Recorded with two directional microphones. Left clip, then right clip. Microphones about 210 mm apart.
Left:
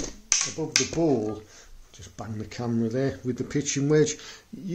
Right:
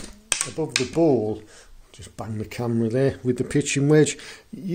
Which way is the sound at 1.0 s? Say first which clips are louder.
Right 5 dB; 40° right (ahead or behind).